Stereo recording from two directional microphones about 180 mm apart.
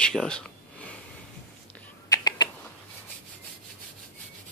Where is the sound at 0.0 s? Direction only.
5° left (ahead or behind).